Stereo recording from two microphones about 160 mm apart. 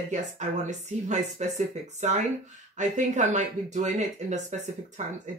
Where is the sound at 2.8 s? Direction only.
50° right (ahead or behind).